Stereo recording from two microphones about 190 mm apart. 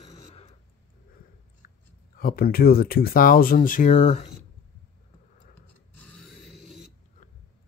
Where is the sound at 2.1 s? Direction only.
50° left (ahead or behind).